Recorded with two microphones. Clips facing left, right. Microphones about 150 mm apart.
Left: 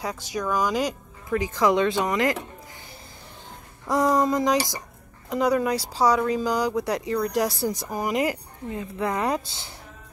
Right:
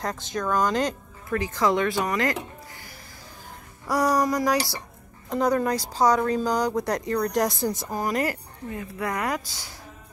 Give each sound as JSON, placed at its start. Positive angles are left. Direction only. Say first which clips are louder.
{"t": 0.0, "sound": "speech", "louder": "even", "side_deg": 10}
{"t": 3.8, "sound": "speech", "louder": "left 1 dB", "side_deg": 20}